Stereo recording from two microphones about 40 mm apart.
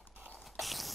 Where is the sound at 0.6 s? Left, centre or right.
Centre.